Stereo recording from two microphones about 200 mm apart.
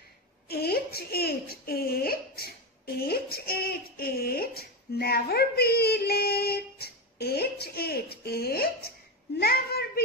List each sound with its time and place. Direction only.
0.5 s a child's voice: 50° left (ahead or behind)